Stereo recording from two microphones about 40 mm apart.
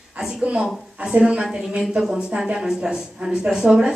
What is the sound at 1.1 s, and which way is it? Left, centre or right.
A woman's voice, right.